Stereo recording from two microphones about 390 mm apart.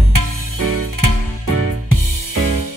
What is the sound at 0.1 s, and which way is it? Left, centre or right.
Music, right.